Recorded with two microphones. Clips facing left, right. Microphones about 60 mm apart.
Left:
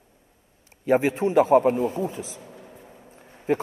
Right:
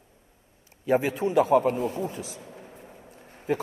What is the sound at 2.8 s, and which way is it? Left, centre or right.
Vehicle, centre.